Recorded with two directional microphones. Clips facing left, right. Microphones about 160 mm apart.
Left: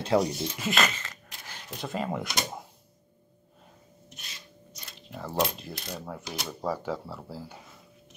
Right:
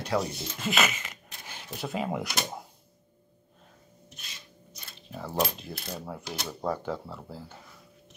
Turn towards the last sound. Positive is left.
turn(degrees=10)  # may be behind; listen again after turning